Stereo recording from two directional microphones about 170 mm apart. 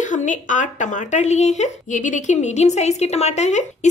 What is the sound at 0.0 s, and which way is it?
Speech, 45° left (ahead or behind).